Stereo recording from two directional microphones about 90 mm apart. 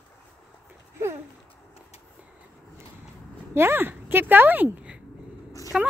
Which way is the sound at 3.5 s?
30° right (ahead or behind).